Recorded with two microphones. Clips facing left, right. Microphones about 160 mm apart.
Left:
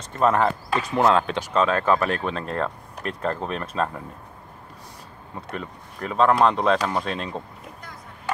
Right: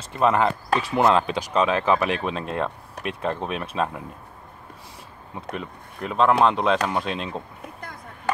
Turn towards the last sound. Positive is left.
turn(degrees=0)  # may be behind; listen again after turning